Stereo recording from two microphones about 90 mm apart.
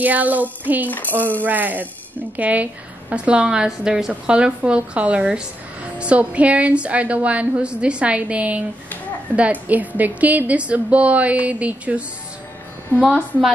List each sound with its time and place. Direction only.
0.0 s child singing: 20° right (ahead or behind)
0.8 s speech: 20° left (ahead or behind)
1.4 s child singing: 20° right (ahead or behind)
2.3 s a woman's voice: 15° right (ahead or behind)